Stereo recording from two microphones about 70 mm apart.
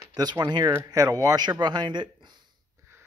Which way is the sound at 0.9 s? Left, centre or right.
Right.